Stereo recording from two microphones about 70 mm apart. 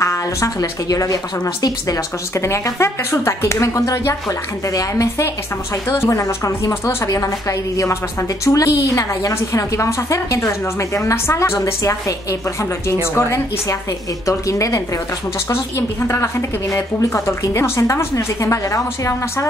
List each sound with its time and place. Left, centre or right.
0.0 s a woman's voice: left
7.1 s a woman's voice: left
14.2 s a woman's voice: left
16.0 s a woman's voice: left